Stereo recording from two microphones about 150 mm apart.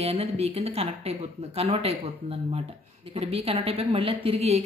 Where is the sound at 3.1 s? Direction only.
40° right (ahead or behind).